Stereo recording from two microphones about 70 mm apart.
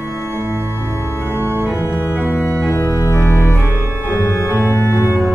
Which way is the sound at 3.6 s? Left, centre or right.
Right.